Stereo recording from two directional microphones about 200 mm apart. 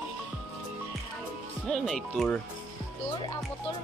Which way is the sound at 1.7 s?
5° left (ahead or behind).